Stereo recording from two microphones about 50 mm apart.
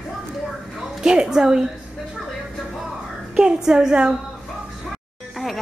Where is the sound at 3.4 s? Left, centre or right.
Centre.